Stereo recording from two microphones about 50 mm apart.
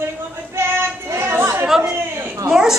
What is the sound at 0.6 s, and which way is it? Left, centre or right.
Child singing, right.